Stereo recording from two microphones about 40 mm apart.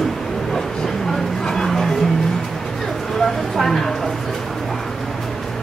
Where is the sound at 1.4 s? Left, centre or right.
Centre.